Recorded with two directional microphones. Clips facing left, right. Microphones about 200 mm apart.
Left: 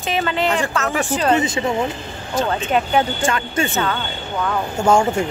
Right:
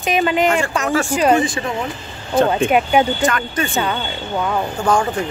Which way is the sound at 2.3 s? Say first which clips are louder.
Right 6 dB; 55° right (ahead or behind).